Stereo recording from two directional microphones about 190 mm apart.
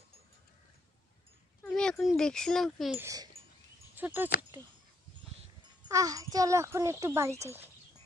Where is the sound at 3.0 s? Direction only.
20° right (ahead or behind).